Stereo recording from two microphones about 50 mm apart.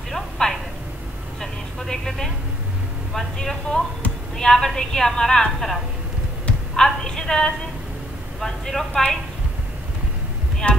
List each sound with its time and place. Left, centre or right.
0.1 s a sound: centre
1.4 s a woman's voice: centre
6.8 s a woman's voice: centre
10.6 s a woman's voice: centre